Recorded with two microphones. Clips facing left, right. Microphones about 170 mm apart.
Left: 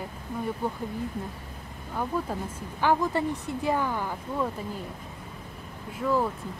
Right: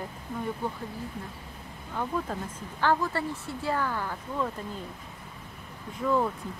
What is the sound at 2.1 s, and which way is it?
Speech, 10° left (ahead or behind).